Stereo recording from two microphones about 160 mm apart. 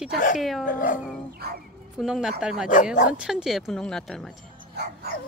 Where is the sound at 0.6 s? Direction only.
55° left (ahead or behind).